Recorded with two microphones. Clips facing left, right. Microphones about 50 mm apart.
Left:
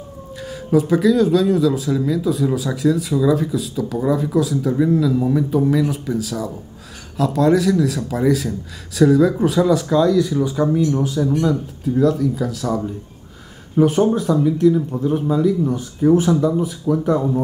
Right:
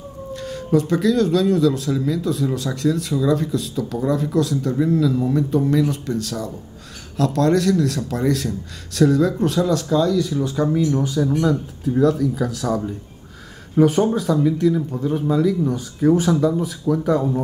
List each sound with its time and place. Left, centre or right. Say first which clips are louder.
0.3 s speech: left 1 dB; centre